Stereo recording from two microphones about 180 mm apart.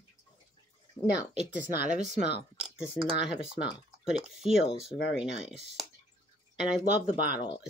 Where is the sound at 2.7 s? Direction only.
5° right (ahead or behind).